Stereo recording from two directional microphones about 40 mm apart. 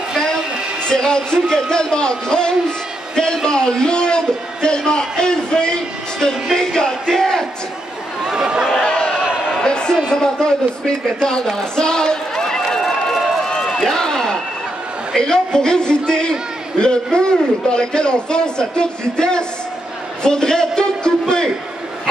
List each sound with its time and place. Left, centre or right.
0.8 s a man's voice: centre
6.5 s a sound: centre
8.4 s speech: centre
8.8 s a sound: left
11.4 s run: centre
15.1 s a man's voice: centre